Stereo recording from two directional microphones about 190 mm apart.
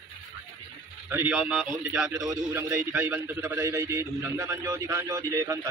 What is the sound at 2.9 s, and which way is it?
A man's voice, 10° right (ahead or behind).